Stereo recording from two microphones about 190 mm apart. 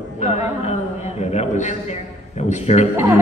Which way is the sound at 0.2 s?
35° left (ahead or behind).